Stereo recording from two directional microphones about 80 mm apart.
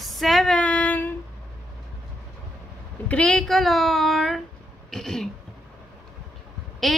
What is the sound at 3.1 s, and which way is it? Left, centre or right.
Speech, centre.